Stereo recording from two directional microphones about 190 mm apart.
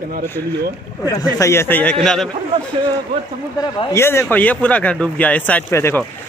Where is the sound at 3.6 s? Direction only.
20° left (ahead or behind).